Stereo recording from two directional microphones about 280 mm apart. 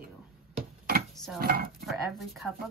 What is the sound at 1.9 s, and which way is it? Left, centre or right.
Speech, centre.